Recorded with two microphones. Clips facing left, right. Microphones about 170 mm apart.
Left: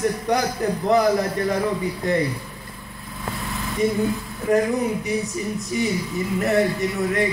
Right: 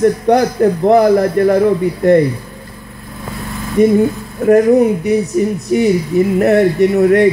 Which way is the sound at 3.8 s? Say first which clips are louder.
Right 11 dB; 60° right (ahead or behind).